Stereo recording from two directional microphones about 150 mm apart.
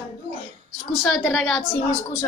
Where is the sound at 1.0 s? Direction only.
Centre (ahead or behind).